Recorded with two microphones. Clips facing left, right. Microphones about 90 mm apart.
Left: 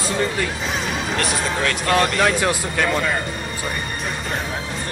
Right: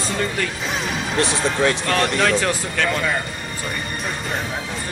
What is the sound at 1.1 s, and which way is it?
Speech, 25° right (ahead or behind).